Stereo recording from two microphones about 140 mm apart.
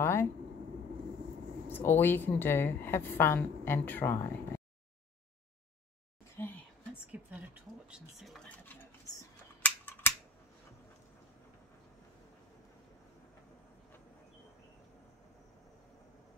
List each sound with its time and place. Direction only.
0.0 s vehicle: 20° left (ahead or behind)
1.7 s a woman's voice: 15° left (ahead or behind)
6.4 s whispering: 15° left (ahead or behind)
7.1 s speech: 10° right (ahead or behind)
8.5 s scissors: 10° left (ahead or behind)